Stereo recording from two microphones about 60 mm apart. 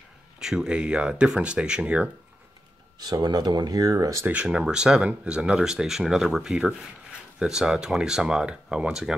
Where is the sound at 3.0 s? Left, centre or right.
Right.